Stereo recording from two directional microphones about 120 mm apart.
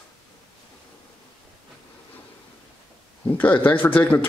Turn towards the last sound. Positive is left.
turn(degrees=15)  # may be behind; listen again after turning